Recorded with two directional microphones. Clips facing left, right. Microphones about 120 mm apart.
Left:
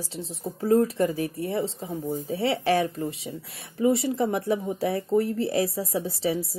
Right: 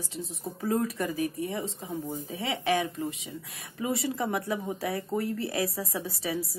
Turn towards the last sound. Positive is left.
turn(degrees=25)  # may be behind; listen again after turning